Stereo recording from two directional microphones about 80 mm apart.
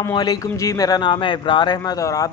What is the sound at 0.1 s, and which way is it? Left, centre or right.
Speech, left.